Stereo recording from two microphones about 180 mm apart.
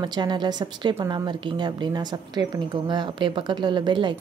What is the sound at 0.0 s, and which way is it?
A woman's voice, 25° right (ahead or behind).